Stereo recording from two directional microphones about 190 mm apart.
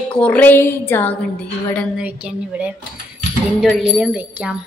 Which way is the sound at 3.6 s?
Centre (ahead or behind).